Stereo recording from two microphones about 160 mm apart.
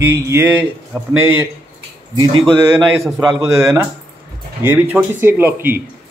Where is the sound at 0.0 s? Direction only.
15° right (ahead or behind).